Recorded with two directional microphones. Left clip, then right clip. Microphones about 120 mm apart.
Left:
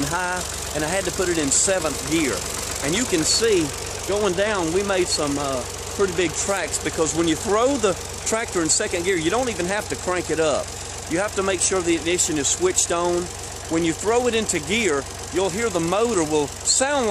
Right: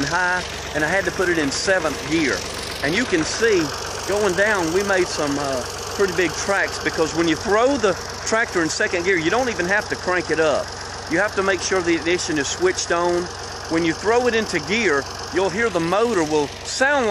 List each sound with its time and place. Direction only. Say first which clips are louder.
0.1 s speech: right 4 dB; 15° left (ahead or behind)